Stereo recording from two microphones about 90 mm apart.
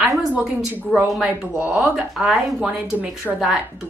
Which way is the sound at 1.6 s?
10° right (ahead or behind).